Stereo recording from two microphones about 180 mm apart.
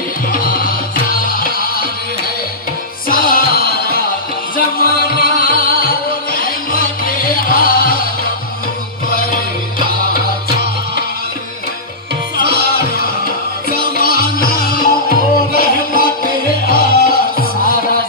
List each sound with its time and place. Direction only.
0.3 s music: 55° left (ahead or behind)
3.1 s music: 50° left (ahead or behind)
12.4 s music: 55° left (ahead or behind)